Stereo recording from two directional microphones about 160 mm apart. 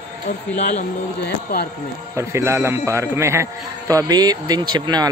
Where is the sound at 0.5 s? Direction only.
50° left (ahead or behind).